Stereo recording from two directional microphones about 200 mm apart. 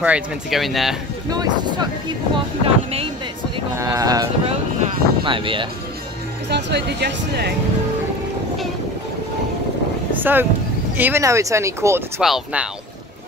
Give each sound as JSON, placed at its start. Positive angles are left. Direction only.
{"t": 0.0, "sound": "speech", "side_deg": -5}
{"t": 1.3, "sound": "speech", "side_deg": -20}
{"t": 3.7, "sound": "speech", "side_deg": -15}
{"t": 4.5, "sound": "a sound", "side_deg": -25}
{"t": 6.5, "sound": "speech", "side_deg": -60}
{"t": 10.1, "sound": "a sound", "side_deg": -10}
{"t": 11.0, "sound": "speech", "side_deg": -10}
{"t": 12.2, "sound": "speech", "side_deg": 0}